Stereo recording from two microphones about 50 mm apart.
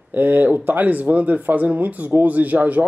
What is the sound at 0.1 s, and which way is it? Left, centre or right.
A man's voice, right.